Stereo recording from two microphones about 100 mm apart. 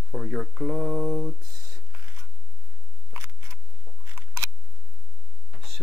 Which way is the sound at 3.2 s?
30° right (ahead or behind).